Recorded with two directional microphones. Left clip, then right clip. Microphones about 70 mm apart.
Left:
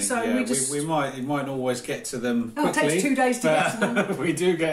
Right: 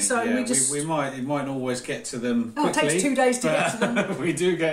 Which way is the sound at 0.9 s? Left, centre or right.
Left.